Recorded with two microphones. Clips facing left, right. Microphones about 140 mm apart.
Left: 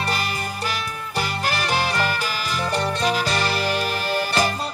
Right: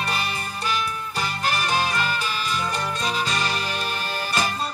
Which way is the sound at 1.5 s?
35° left (ahead or behind).